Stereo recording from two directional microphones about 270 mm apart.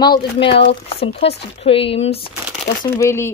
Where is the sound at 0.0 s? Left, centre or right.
Centre.